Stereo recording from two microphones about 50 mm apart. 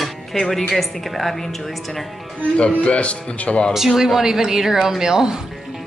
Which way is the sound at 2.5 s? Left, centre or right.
Left.